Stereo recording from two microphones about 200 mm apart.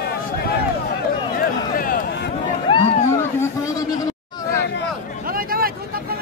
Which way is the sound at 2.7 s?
25° left (ahead or behind).